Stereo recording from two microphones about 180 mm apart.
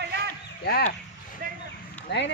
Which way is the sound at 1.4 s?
55° right (ahead or behind).